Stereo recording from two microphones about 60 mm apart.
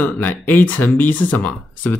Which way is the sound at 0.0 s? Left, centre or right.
Left.